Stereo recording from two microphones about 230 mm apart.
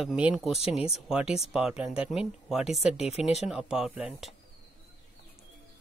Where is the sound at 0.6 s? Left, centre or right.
Left.